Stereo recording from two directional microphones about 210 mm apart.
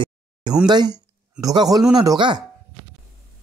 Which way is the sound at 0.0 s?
20° right (ahead or behind).